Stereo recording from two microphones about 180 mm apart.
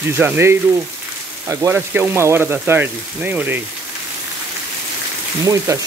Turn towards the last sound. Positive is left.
turn(degrees=-15)  # may be behind; listen again after turning